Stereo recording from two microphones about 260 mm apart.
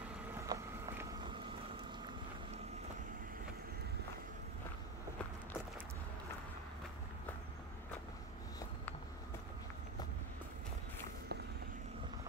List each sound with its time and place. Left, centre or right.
0.5 s vehicle: centre